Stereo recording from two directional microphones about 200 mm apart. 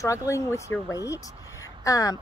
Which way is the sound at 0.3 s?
15° left (ahead or behind).